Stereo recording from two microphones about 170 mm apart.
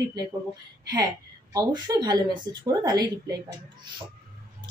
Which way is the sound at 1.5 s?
25° right (ahead or behind).